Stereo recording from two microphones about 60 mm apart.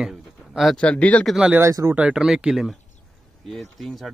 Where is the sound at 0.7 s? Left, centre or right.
Centre.